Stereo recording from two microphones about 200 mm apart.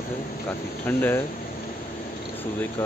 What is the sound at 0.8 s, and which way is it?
Speech, 10° left (ahead or behind).